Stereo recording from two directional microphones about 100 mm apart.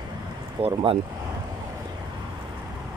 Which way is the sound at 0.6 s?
65° right (ahead or behind).